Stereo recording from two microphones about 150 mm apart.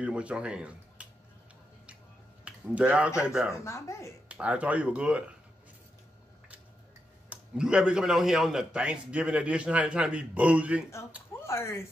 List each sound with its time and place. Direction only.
0.0 s a man's voice: 10° right (ahead or behind)
2.4 s speech: 5° right (ahead or behind)
3.6 s speech: 20° left (ahead or behind)
4.3 s a man's voice: 10° right (ahead or behind)
7.2 s a man's voice: 5° right (ahead or behind)
11.3 s speech: 15° left (ahead or behind)